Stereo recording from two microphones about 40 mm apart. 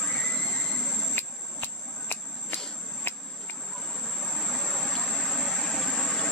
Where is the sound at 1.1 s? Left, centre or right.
Left.